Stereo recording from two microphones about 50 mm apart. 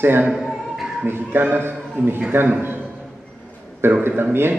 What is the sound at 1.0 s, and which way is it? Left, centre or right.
A man's voice, right.